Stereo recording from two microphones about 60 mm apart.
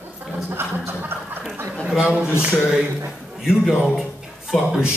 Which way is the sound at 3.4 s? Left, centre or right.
Centre.